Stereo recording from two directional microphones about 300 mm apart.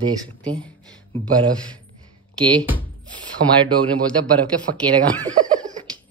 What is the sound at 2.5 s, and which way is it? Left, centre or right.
Speech, centre.